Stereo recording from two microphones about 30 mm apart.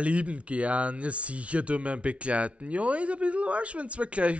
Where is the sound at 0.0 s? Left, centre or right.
Right.